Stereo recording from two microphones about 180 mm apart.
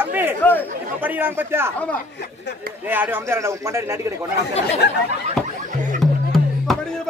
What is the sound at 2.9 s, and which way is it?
A man's voice, 10° right (ahead or behind).